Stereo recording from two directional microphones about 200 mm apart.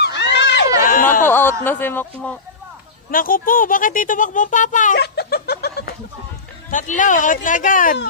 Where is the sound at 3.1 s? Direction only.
45° left (ahead or behind).